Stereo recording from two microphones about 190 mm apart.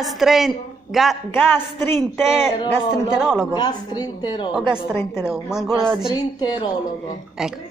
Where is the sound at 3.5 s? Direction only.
20° left (ahead or behind).